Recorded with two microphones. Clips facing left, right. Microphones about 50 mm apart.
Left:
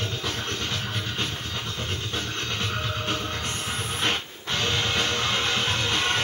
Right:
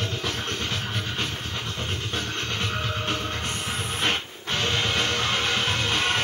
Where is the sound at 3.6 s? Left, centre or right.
Right.